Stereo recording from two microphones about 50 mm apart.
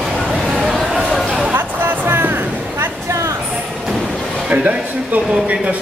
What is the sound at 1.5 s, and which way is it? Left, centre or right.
Music, right.